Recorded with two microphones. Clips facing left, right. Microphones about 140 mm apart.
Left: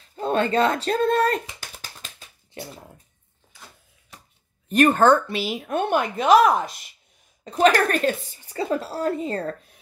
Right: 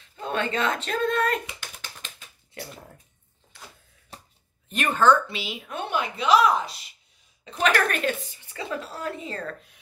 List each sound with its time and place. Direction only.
0.1 s typing: 40° left (ahead or behind)
4.6 s a woman's voice: 45° left (ahead or behind)